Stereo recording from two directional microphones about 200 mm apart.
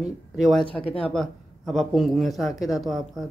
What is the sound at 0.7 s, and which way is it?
Speech, 30° left (ahead or behind).